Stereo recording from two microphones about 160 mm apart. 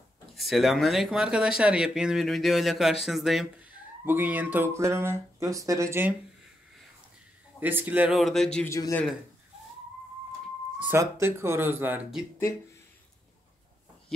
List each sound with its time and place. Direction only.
0.4 s speech: centre (ahead or behind)
4.0 s speech: 10° right (ahead or behind)
7.6 s speech: 10° right (ahead or behind); by 8.6 s 5° left (ahead or behind)
8.6 s a man's voice: 20° left (ahead or behind)
10.8 s speech: 15° right (ahead or behind)